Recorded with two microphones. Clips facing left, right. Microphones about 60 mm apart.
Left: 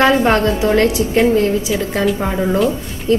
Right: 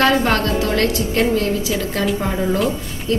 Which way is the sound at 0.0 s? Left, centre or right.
Left.